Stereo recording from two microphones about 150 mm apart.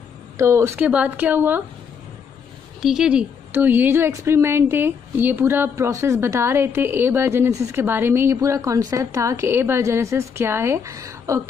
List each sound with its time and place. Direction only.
0.4 s a woman's voice: 20° right (ahead or behind)
2.8 s a woman's voice: 5° right (ahead or behind); by 11.4 s 20° right (ahead or behind)